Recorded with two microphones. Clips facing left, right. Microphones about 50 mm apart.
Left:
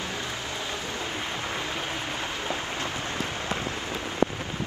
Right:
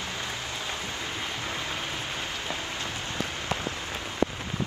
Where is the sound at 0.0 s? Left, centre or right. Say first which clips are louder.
Left 1 dB; left.